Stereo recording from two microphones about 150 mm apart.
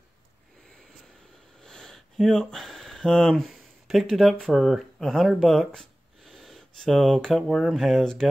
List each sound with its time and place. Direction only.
1.6 s speech: 5° left (ahead or behind)